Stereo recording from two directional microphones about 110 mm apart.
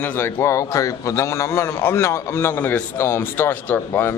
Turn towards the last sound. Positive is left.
turn(degrees=20)  # may be behind; listen again after turning